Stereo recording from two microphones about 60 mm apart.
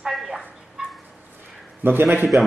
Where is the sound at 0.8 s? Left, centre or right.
Centre.